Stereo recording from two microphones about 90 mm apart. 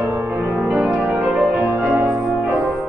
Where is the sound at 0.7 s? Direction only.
5° right (ahead or behind).